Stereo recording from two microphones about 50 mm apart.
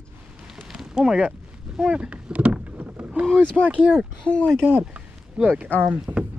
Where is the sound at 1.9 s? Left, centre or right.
Right.